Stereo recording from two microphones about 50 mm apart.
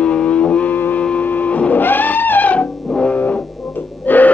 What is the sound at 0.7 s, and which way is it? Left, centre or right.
Music, left.